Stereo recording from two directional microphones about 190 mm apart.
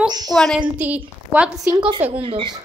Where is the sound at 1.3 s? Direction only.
5° right (ahead or behind).